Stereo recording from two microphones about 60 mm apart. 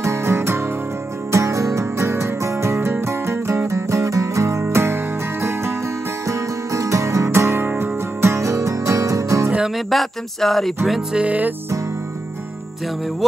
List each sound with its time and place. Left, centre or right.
0.0 s music: right
1.3 s music: right
6.2 s music: right
7.2 s music: right
9.8 s music: centre
11.0 s music: right